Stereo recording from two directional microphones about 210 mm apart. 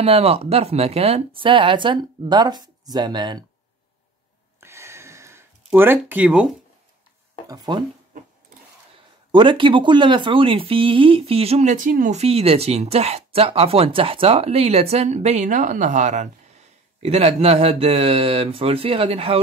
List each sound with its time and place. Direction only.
0.0 s speech: 30° right (ahead or behind)
4.6 s a sound: 10° right (ahead or behind)
7.4 s speech: 20° right (ahead or behind)
9.3 s speech: 20° right (ahead or behind)